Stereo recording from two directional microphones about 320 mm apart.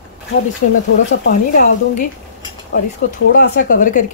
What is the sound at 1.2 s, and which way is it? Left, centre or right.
Speech, left.